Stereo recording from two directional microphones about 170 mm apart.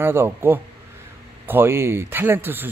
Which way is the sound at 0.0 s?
15° right (ahead or behind).